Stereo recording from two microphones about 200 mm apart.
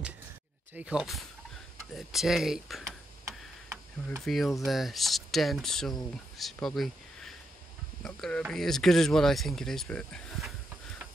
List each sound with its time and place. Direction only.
0.7 s speech: 5° right (ahead or behind)
3.3 s tick-tock: 15° right (ahead or behind)
4.2 s speech: centre (ahead or behind)